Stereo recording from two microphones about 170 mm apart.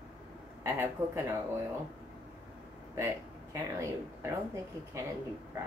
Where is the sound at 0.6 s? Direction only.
15° right (ahead or behind).